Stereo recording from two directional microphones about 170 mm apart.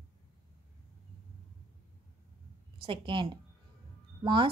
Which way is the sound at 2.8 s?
30° right (ahead or behind).